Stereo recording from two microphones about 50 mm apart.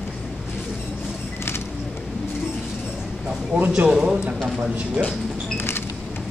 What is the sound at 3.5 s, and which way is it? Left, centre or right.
Speech, right.